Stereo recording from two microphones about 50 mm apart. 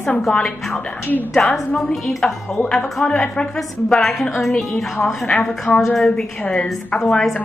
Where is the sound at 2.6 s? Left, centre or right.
Centre.